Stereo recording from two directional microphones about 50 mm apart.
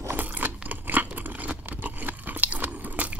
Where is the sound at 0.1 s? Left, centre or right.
Right.